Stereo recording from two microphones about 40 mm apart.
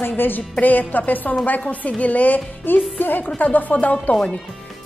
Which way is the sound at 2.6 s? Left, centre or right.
Left.